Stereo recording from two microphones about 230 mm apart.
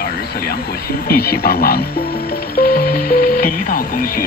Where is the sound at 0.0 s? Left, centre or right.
Left.